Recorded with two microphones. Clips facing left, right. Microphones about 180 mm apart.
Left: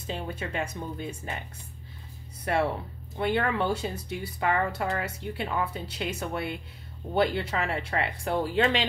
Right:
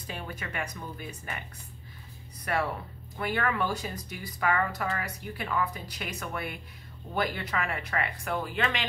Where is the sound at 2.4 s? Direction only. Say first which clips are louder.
Left 4 dB; 25° left (ahead or behind).